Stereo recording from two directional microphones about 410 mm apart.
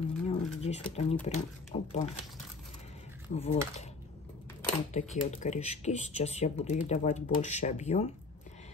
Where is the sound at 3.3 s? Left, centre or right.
Centre.